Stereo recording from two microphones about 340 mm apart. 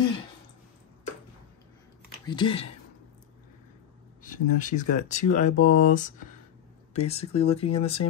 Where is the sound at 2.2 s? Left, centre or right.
Centre.